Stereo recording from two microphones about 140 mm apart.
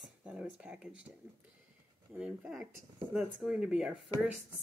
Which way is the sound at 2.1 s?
5° right (ahead or behind).